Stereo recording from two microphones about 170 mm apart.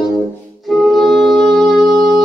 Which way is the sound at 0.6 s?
Centre (ahead or behind).